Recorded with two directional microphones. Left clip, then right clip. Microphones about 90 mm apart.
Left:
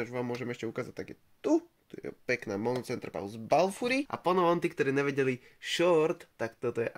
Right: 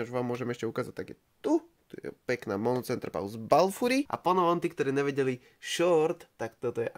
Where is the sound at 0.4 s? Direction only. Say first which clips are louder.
Right 3 dB; 85° right.